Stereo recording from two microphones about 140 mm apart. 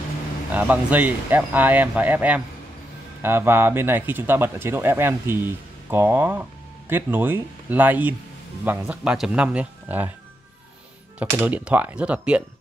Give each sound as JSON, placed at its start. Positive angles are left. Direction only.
{"t": 0.5, "sound": "speech", "side_deg": -10}
{"t": 11.1, "sound": "speech", "side_deg": -10}